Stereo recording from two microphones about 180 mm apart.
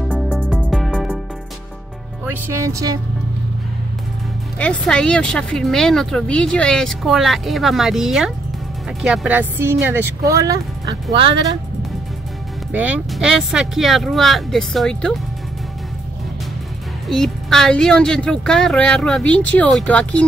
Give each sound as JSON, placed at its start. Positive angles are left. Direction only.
{"t": 0.1, "sound": "music", "side_deg": -5}
{"t": 2.2, "sound": "speech", "side_deg": -15}
{"t": 4.6, "sound": "speech", "side_deg": 5}
{"t": 12.7, "sound": "speech", "side_deg": -10}
{"t": 17.1, "sound": "speech", "side_deg": 0}